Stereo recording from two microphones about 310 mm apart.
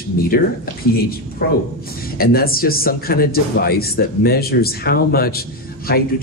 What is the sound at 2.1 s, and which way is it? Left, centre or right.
A man's voice, left.